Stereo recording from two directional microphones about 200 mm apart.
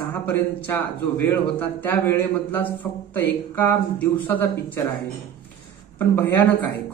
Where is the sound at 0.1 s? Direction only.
10° left (ahead or behind).